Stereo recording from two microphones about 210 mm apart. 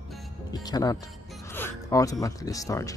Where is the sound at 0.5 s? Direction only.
20° left (ahead or behind).